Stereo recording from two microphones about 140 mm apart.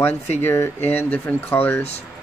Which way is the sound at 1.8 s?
50° left (ahead or behind).